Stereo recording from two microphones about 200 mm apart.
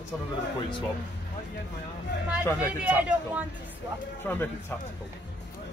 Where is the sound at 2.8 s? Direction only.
5° right (ahead or behind).